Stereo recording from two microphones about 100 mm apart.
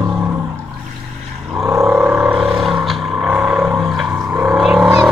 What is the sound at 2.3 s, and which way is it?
Vehicle, centre (ahead or behind).